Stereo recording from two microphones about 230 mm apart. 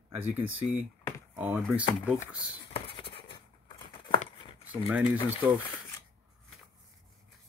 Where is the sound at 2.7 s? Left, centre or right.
Left.